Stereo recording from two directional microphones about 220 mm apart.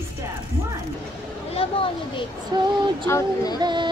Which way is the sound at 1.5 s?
25° left (ahead or behind).